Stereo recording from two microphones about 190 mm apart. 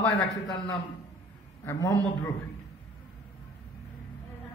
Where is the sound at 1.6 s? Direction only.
15° left (ahead or behind).